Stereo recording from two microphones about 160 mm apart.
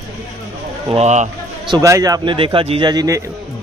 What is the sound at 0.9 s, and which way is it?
Speech, 45° right (ahead or behind).